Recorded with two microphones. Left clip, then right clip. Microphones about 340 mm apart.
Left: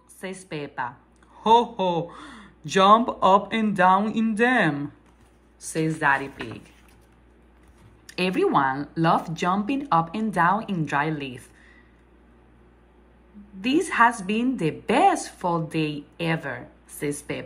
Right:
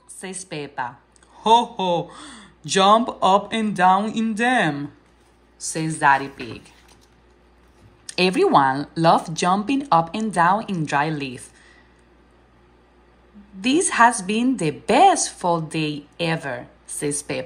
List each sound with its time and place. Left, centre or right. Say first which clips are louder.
0.2 s a woman's voice: right 2 dB; centre
8.1 s a woman's voice: right 5 dB; centre
13.6 s a woman's voice: right 3 dB; centre